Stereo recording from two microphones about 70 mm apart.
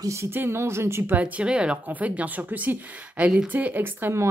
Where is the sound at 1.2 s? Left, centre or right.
Centre.